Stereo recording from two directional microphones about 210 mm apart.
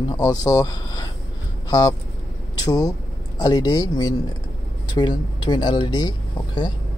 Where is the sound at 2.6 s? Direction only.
15° left (ahead or behind).